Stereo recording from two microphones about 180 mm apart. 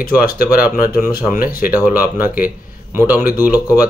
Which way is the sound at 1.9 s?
10° right (ahead or behind).